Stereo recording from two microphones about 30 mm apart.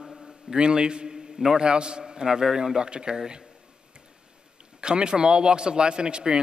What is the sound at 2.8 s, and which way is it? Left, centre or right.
Speech, right.